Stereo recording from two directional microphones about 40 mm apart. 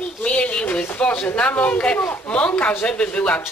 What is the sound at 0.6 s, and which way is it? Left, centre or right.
Speech, left.